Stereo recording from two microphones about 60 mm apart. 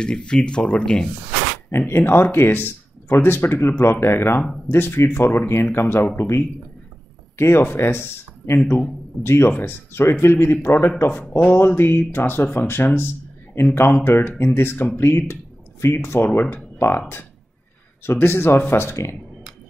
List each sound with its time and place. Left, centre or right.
0.0 s speech: centre
1.7 s speech: left
8.5 s speech: left
9.2 s speech: left
16.3 s speech: left
18.0 s speech: left